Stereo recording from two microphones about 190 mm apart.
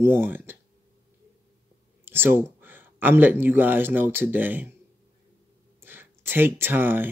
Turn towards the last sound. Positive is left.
turn(degrees=-10)  # may be behind; listen again after turning